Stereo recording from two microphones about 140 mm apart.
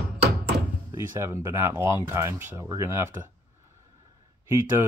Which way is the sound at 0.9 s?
20° right (ahead or behind).